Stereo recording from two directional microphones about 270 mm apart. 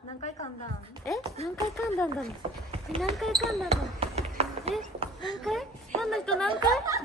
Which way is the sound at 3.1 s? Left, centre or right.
Centre.